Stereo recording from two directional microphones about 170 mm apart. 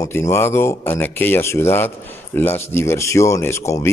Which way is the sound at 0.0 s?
15° left (ahead or behind).